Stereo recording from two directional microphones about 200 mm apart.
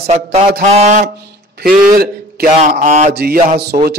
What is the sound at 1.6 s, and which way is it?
Speech, 50° right (ahead or behind).